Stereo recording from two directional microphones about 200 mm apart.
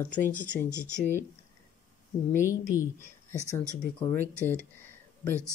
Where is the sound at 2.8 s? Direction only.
10° left (ahead or behind).